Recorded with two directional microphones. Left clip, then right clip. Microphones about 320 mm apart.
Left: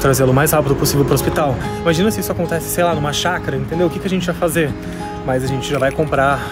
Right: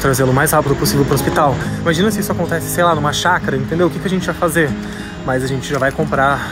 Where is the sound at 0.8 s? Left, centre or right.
Centre.